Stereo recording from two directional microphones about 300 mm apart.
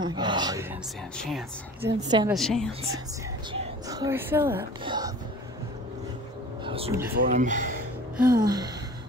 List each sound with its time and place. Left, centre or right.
0.0 s speech: centre
1.1 s speech: centre
2.0 s speech: centre
2.3 s speech: centre
3.5 s speech: centre
6.6 s a sound: centre
7.2 s speech: right
8.3 s speech: centre